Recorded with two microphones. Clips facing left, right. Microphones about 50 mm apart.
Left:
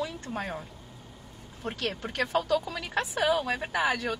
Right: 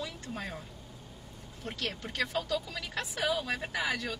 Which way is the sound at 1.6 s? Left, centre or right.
Left.